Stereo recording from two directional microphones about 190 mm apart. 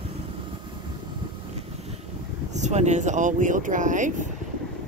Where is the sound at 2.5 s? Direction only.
40° right (ahead or behind).